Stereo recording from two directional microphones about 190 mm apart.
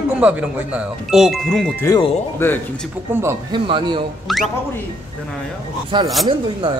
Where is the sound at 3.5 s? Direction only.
25° right (ahead or behind).